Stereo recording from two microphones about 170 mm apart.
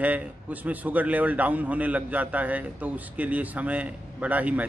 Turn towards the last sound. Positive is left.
turn(degrees=-10)  # may be behind; listen again after turning